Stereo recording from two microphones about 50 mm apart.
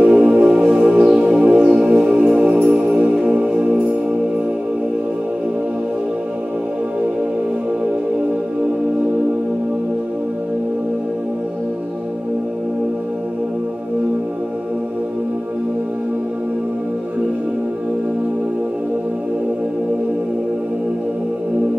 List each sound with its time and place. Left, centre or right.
0.0 s music: right
3.4 s music: right